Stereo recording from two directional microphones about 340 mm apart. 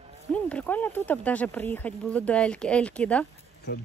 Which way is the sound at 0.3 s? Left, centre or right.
Centre.